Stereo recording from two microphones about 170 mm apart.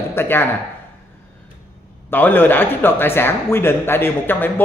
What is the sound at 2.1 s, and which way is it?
A man's voice, 10° left (ahead or behind).